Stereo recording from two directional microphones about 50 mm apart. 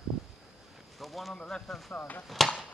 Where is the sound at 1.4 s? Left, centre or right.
Centre.